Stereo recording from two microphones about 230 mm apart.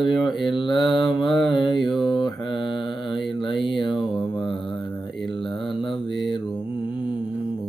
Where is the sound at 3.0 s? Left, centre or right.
Centre.